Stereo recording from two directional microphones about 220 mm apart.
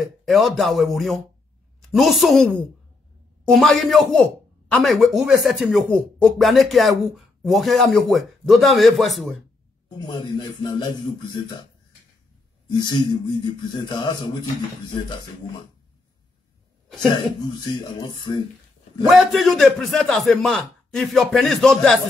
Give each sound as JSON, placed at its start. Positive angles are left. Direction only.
{"t": 0.3, "sound": "a man's voice", "side_deg": 0}
{"t": 9.8, "sound": "a man's voice", "side_deg": 20}
{"t": 12.6, "sound": "a man's voice", "side_deg": 20}
{"t": 17.1, "sound": "a man's voice", "side_deg": 20}
{"t": 19.0, "sound": "speech", "side_deg": 0}